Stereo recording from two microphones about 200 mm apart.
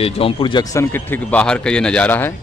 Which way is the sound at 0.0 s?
25° left (ahead or behind).